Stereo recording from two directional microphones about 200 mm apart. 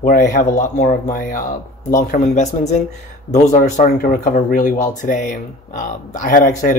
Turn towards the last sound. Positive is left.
turn(degrees=45)  # may be behind; listen again after turning